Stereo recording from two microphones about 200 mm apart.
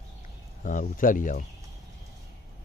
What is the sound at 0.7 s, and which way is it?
Speech, 40° left (ahead or behind).